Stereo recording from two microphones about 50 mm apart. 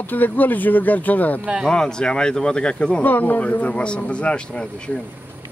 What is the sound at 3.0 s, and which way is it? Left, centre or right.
Speech, left.